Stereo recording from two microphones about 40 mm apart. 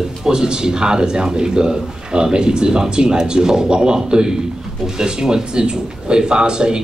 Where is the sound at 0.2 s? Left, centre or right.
Centre.